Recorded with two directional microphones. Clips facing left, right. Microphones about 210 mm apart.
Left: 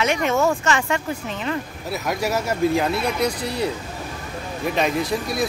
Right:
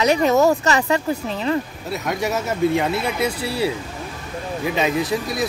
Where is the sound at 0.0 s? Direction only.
35° right (ahead or behind).